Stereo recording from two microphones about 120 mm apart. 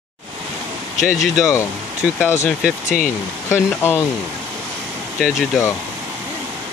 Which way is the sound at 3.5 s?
20° left (ahead or behind).